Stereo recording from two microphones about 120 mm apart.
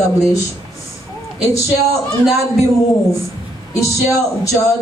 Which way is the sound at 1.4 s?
25° left (ahead or behind).